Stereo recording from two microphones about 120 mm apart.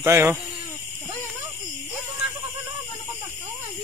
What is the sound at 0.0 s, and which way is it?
Speech, 20° right (ahead or behind).